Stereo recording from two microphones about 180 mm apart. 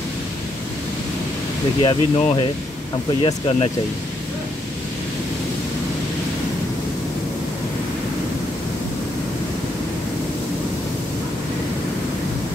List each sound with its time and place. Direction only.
1.8 s speech: 30° left (ahead or behind)